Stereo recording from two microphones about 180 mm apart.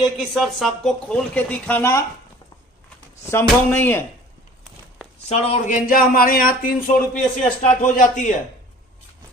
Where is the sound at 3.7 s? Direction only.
10° left (ahead or behind).